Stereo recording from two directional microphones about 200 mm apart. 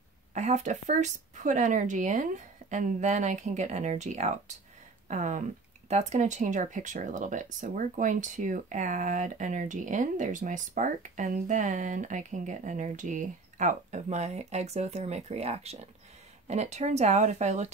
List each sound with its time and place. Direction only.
0.3 s speech: 35° right (ahead or behind)